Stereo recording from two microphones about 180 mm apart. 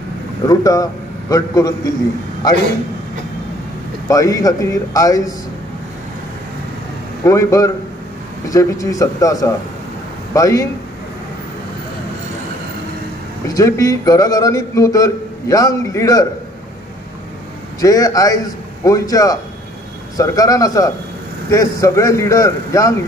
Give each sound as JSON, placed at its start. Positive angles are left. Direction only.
{"t": 0.5, "sound": "a man's voice", "side_deg": 20}
{"t": 4.1, "sound": "a man's voice", "side_deg": 20}
{"t": 7.2, "sound": "a man's voice", "side_deg": 15}
{"t": 13.5, "sound": "a man's voice", "side_deg": 20}
{"t": 17.7, "sound": "a man's voice", "side_deg": 20}